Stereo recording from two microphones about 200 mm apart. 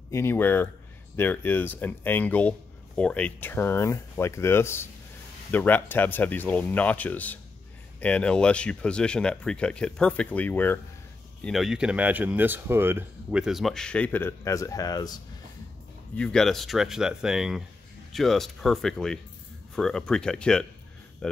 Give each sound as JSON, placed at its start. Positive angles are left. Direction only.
{"t": 0.1, "sound": "speech", "side_deg": 10}
{"t": 16.2, "sound": "speech", "side_deg": 5}